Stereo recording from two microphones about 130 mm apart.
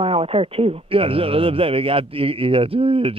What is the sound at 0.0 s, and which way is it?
Speech, 45° right (ahead or behind).